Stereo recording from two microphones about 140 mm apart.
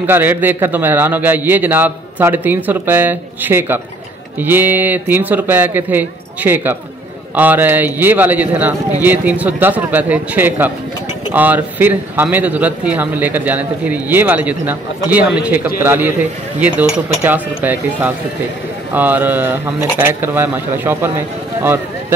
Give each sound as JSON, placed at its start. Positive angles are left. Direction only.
{"t": 0.0, "sound": "speech", "side_deg": -15}